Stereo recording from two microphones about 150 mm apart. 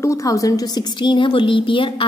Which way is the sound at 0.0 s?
20° left (ahead or behind).